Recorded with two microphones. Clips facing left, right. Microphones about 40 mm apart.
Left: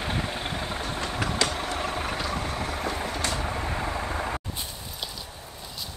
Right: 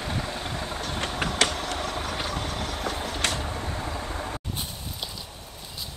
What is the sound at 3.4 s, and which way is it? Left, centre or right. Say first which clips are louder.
Vehicle: left 2 dB; centre.